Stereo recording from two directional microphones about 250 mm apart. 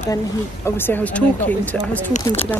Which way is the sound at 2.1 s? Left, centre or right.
Left.